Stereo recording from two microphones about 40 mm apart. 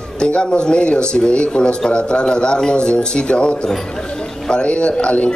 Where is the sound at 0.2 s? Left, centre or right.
Left.